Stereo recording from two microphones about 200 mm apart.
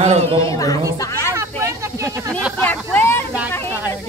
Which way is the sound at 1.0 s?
15° left (ahead or behind).